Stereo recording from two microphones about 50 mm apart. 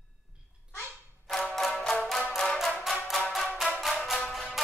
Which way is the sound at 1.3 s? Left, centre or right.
Centre.